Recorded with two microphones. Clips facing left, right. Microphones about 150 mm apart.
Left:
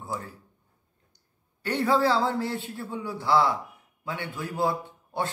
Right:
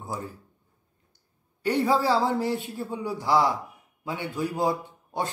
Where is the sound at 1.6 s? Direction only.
10° right (ahead or behind).